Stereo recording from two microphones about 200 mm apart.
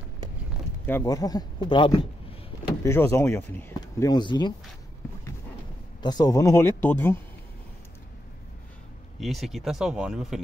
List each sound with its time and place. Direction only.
0.8 s speech: 15° left (ahead or behind)
2.8 s speech: 15° left (ahead or behind)
6.0 s speech: 20° left (ahead or behind)
9.2 s speech: centre (ahead or behind)